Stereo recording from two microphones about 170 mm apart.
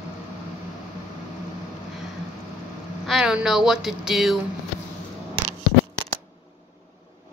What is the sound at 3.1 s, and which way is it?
A woman's voice, 5° right (ahead or behind).